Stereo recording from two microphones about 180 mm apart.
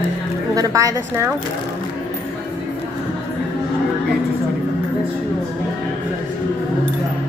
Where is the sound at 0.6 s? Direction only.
20° right (ahead or behind).